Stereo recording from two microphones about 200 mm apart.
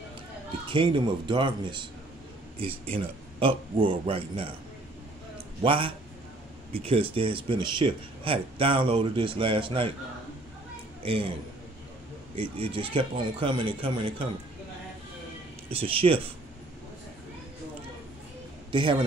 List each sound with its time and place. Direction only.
0.7 s speech: 25° right (ahead or behind)
2.9 s speech: 25° right (ahead or behind)
5.6 s speech: 25° right (ahead or behind)
11.0 s speech: 30° right (ahead or behind)
12.4 s speech: 25° right (ahead or behind)
15.7 s speech: 30° right (ahead or behind)
18.7 s a man's voice: 25° right (ahead or behind)